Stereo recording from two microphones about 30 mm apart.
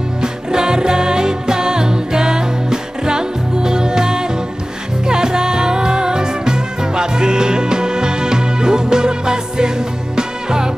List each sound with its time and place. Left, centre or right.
0.2 s music: right